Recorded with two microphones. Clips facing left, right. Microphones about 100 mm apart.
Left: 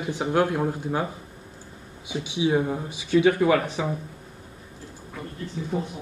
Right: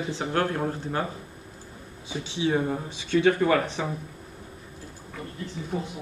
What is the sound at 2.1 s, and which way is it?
Speech, 15° left (ahead or behind).